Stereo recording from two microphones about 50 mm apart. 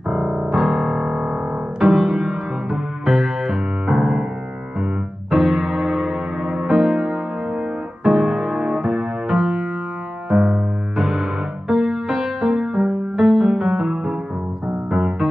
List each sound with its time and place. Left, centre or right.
0.1 s piano: centre
3.8 s music: centre
5.3 s music: centre
12.5 s music: centre